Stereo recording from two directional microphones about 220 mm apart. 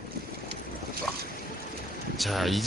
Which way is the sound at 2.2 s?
Centre (ahead or behind).